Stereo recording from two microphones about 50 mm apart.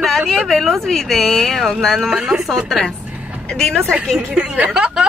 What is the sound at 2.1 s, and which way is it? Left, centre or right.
Speech, centre.